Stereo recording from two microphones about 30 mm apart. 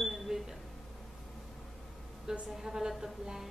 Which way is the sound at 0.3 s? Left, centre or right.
Right.